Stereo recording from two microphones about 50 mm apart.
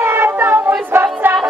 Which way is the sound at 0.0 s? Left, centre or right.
Right.